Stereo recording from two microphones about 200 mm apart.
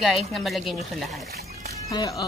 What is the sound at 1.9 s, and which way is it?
Speech, 20° left (ahead or behind).